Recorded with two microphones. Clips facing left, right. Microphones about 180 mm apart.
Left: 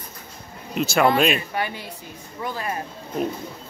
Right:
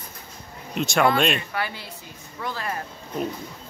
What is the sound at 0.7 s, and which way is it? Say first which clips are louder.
Speech: left 2 dB; centre (ahead or behind).